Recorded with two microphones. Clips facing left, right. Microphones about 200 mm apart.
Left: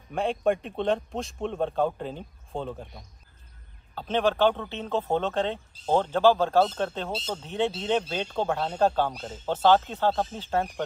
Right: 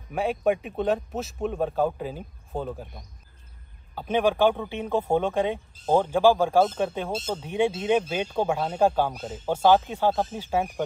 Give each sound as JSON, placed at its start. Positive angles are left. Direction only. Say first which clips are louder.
{"t": 0.1, "sound": "speech", "louder": "right 1 dB", "side_deg": -5}
{"t": 7.1, "sound": "speech", "louder": "right 3 dB", "side_deg": -50}
{"t": 7.4, "sound": "speech", "louder": "right 4 dB", "side_deg": -10}